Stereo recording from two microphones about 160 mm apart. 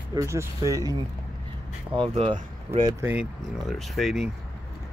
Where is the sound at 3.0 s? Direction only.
10° right (ahead or behind).